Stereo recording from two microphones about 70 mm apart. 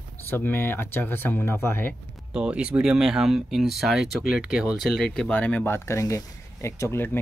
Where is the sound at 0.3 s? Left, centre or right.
Left.